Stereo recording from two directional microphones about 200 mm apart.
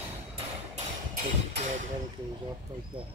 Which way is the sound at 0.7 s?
35° right (ahead or behind).